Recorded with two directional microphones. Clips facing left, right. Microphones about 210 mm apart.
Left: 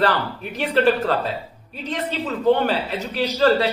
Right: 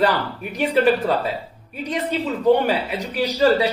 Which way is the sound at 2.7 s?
15° right (ahead or behind).